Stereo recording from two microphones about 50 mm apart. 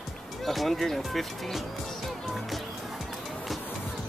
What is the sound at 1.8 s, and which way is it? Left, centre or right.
Music, centre.